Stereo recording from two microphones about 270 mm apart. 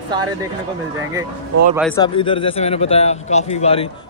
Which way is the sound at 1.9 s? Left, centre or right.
Centre.